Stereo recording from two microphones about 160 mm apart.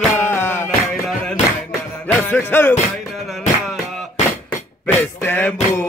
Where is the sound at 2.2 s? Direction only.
10° left (ahead or behind).